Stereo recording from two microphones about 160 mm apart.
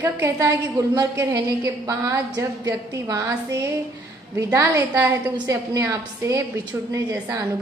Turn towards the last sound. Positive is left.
turn(degrees=-20)  # may be behind; listen again after turning